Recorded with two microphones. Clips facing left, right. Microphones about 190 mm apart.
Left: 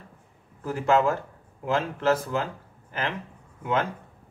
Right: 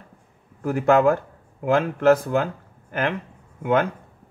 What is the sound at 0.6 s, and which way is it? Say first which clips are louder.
Speech: right 5 dB; 55° right (ahead or behind).